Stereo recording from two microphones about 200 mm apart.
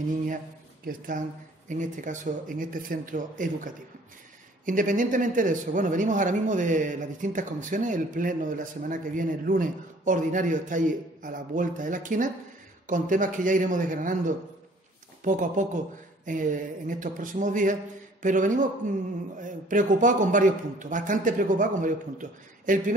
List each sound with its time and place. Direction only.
0.8 s speech: 45° right (ahead or behind)